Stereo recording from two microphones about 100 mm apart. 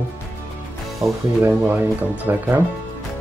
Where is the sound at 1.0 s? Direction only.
Centre (ahead or behind).